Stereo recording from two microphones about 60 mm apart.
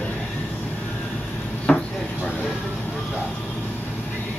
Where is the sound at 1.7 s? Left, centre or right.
Centre.